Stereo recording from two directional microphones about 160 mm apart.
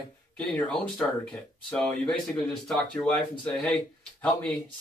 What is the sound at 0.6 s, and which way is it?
Speech, 5° left (ahead or behind).